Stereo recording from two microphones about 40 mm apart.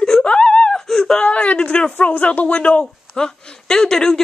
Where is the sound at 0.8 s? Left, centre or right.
Centre.